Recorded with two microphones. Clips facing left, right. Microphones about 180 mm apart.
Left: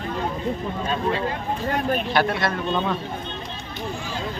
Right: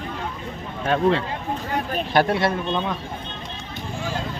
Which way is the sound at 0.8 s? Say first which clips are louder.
Right 7 dB; 70° right (ahead or behind).